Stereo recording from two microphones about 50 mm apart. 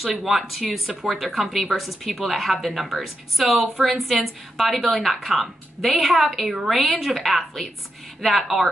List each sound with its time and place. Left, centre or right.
0.0 s a woman's voice: centre